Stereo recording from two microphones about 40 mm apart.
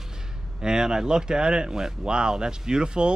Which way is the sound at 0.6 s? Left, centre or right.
Centre.